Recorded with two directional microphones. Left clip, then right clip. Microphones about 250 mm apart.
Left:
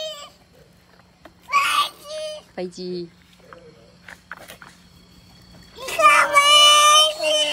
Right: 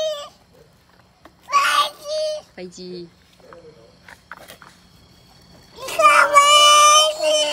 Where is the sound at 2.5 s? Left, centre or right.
Centre.